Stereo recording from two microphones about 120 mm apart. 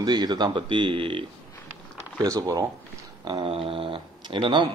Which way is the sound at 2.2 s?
30° right (ahead or behind).